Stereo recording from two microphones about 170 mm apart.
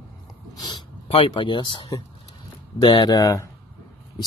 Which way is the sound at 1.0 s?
30° left (ahead or behind).